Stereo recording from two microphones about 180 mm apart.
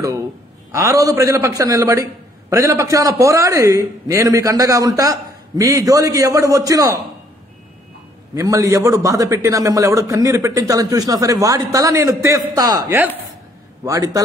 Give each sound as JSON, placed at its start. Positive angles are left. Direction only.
{"t": 0.7, "sound": "a man's voice", "side_deg": -15}
{"t": 8.4, "sound": "a man's voice", "side_deg": -15}